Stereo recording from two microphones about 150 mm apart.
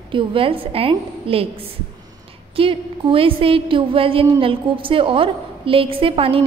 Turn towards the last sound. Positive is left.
turn(degrees=-40)  # may be behind; listen again after turning